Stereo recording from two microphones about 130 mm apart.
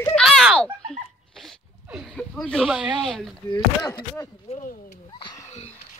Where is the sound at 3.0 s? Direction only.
5° left (ahead or behind).